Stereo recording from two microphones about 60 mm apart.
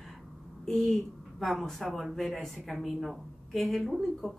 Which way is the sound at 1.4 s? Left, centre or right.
Centre.